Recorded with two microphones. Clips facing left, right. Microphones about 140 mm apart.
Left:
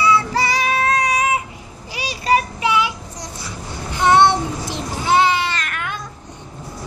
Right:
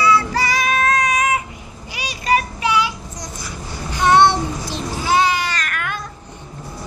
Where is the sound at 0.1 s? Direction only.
30° left (ahead or behind).